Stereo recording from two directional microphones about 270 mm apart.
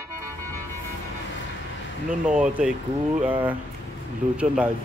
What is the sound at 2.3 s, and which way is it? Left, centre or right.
Speech, centre.